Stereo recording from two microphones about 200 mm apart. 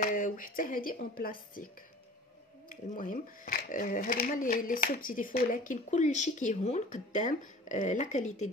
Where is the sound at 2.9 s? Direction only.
40° left (ahead or behind).